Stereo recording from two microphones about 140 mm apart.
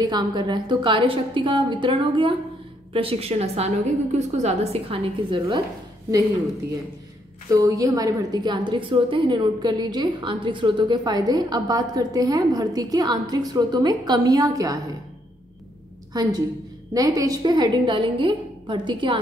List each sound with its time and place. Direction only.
0.0 s a woman's voice: 30° right (ahead or behind)
7.5 s a woman's voice: 25° right (ahead or behind)
16.1 s a woman's voice: 25° right (ahead or behind)